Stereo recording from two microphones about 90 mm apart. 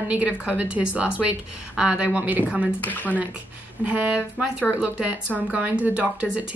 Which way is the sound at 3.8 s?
15° right (ahead or behind).